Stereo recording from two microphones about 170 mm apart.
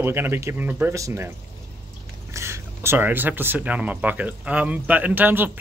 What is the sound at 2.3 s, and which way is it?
Speech, 15° right (ahead or behind).